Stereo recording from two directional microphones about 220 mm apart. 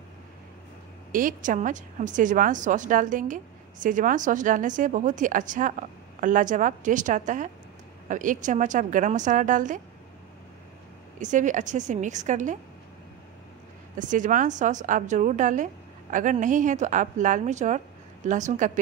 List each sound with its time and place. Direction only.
1.1 s a woman's voice: 35° right (ahead or behind)
11.1 s a woman's voice: 35° right (ahead or behind)
13.9 s a woman's voice: 35° right (ahead or behind)